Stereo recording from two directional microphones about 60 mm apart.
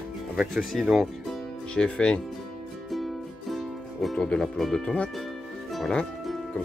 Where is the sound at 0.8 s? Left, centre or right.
Centre.